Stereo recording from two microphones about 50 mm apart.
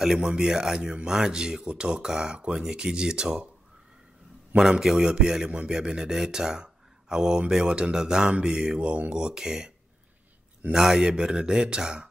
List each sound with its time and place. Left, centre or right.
0.0 s speech: centre
4.6 s speech: centre
9.2 s speech: centre
10.7 s speech: centre